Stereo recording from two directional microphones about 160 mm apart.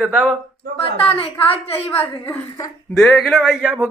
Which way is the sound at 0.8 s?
35° left (ahead or behind).